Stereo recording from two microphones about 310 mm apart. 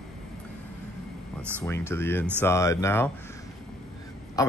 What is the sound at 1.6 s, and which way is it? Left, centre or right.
Speech, centre.